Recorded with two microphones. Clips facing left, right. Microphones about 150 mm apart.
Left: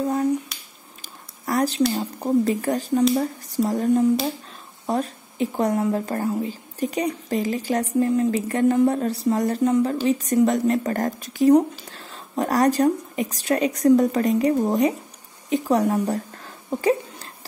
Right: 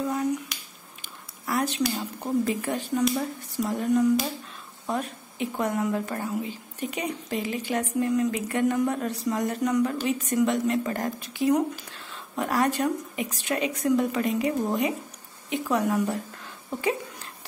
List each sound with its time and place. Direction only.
0.0 s finger snapping: 35° left (ahead or behind)
1.0 s a woman's voice: 40° left (ahead or behind)